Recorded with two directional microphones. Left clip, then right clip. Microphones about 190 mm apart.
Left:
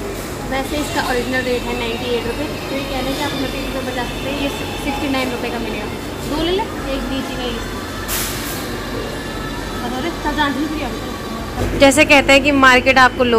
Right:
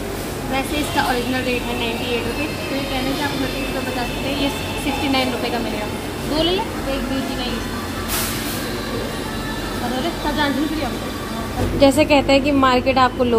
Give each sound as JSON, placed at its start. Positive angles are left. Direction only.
{"t": 11.8, "sound": "a woman's voice", "side_deg": 0}